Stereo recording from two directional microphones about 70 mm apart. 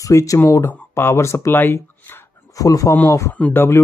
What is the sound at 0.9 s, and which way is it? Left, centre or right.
Speech, left.